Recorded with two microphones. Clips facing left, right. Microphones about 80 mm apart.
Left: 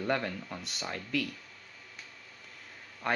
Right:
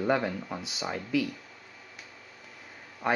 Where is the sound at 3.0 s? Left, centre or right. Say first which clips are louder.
Right 4 dB; centre.